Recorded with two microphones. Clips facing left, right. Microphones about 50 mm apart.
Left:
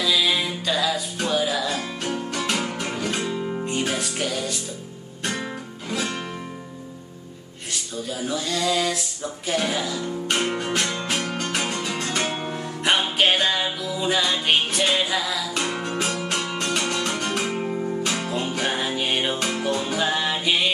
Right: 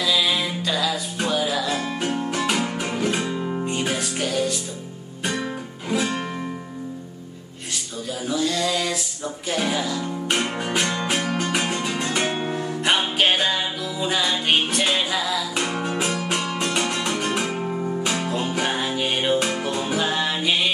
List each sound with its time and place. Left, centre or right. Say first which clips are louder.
0.0 s music: even; centre
8.2 s a sound: right 3 dB; centre
10.5 s music: right 1 dB; centre
12.5 s music: left 1 dB; centre
15.6 s music: right 1 dB; centre